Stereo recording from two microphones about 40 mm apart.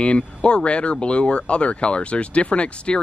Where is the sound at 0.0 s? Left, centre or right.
Left.